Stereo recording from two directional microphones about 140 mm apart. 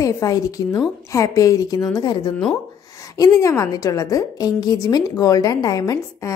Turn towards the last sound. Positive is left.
turn(degrees=25)  # may be behind; listen again after turning